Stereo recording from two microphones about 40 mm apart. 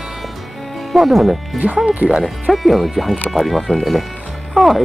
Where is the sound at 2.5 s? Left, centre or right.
Centre.